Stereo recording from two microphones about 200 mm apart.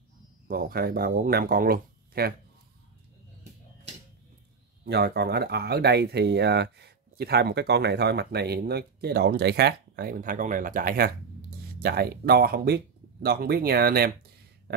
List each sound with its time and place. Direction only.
0.5 s speech: 45° right (ahead or behind)
4.8 s speech: 55° right (ahead or behind)
14.7 s a sound: 50° right (ahead or behind)